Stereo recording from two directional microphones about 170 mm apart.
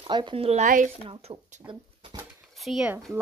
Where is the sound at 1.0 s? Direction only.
30° right (ahead or behind).